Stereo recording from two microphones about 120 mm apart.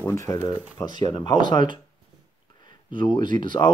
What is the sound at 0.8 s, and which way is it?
Speech, 35° left (ahead or behind).